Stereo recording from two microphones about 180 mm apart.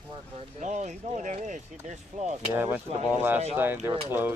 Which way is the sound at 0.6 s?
40° right (ahead or behind).